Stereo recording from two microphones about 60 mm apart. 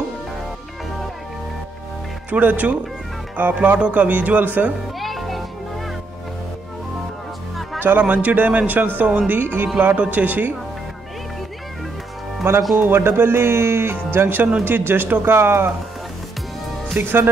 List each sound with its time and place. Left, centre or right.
2.3 s speech: right
5.0 s music: centre
8.0 s speech: right
12.7 s speech: right
17.0 s speech: right